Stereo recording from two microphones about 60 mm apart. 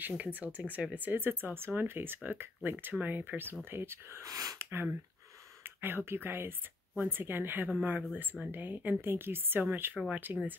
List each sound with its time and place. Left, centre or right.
0.0 s speech: right
4.3 s speech: right
4.6 s speech: right